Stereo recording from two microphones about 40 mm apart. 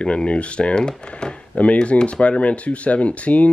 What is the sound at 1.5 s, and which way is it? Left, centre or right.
Speech, left.